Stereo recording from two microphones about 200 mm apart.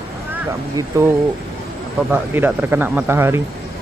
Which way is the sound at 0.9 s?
15° right (ahead or behind).